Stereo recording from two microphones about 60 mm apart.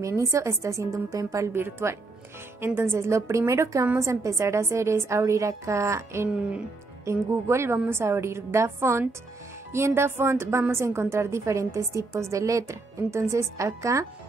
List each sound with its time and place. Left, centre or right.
0.0 s a woman's voice: right
1.5 s a woman's voice: right